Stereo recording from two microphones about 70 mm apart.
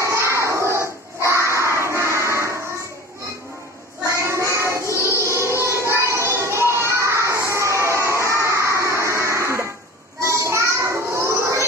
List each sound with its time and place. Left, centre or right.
0.0 s crowd: right
2.3 s a sound: right
4.0 s child singing: right
4.9 s music: right
8.5 s a sound: right
10.2 s child singing: right